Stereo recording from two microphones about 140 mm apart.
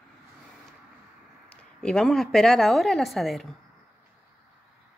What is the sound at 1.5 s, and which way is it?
Speech, 5° left (ahead or behind).